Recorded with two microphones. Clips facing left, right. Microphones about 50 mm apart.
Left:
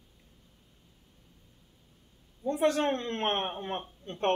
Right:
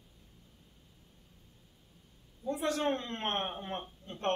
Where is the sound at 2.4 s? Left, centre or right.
Left.